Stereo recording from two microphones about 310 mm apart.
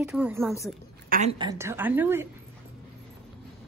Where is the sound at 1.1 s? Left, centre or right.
Right.